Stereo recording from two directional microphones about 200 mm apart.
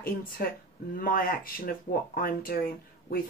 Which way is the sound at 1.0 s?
45° left (ahead or behind).